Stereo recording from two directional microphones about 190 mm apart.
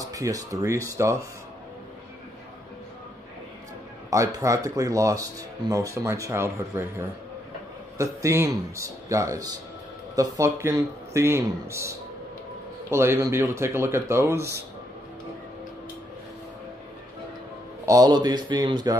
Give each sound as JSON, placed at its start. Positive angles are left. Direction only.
{"t": 0.0, "sound": "speech", "side_deg": -20}
{"t": 4.1, "sound": "speech", "side_deg": -15}
{"t": 12.9, "sound": "speech", "side_deg": -15}
{"t": 17.8, "sound": "speech", "side_deg": -20}